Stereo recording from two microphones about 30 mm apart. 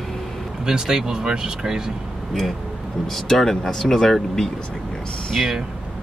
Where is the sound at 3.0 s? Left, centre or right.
Centre.